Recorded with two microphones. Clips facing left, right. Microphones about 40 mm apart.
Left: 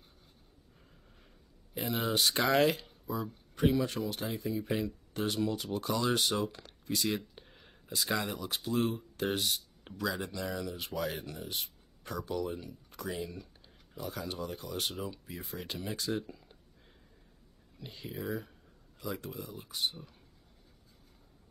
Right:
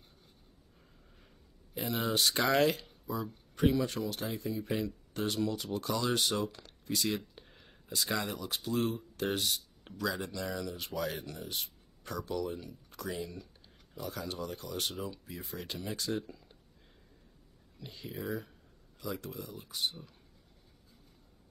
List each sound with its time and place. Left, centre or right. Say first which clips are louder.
1.7 s speech: even; centre
7.3 s a sound: left 1 dB; centre
8.0 s speech: left 1 dB; centre
17.7 s speech: left 1 dB; centre
18.9 s speech: even; centre